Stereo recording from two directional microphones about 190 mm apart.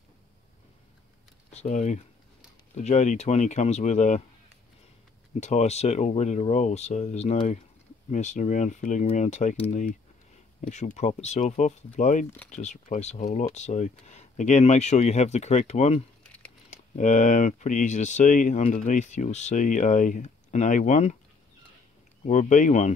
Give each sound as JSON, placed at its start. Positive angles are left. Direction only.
{"t": 1.5, "sound": "speech", "side_deg": 35}
{"t": 5.4, "sound": "speech", "side_deg": 35}
{"t": 22.2, "sound": "speech", "side_deg": 40}